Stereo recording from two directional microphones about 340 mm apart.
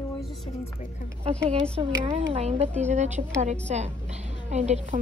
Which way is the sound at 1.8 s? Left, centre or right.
Centre.